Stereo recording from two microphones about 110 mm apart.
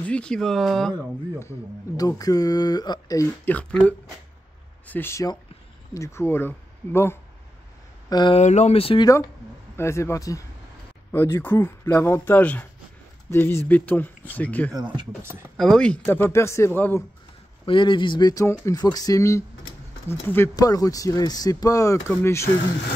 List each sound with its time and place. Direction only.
0.0 s speech: 10° left (ahead or behind)
2.0 s speech: 35° left (ahead or behind)
3.4 s speech: 15° left (ahead or behind)
8.1 s speech: 40° left (ahead or behind)
8.4 s speech: 90° left; by 9.0 s 60° left (ahead or behind)
9.0 s speech: 35° left (ahead or behind)
9.8 s speech: 25° left (ahead or behind)
14.7 s speech: 40° right (ahead or behind)
15.5 s speech: 5° left (ahead or behind)
16.1 s speech: 25° left (ahead or behind)
17.6 s speech: 50° left (ahead or behind)
18.3 s speech: 30° left (ahead or behind)
20.5 s speech: 30° left (ahead or behind)